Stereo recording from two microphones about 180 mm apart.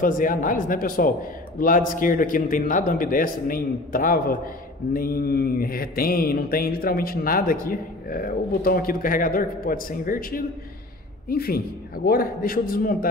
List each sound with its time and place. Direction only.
0.0 s mantra: 50° left (ahead or behind)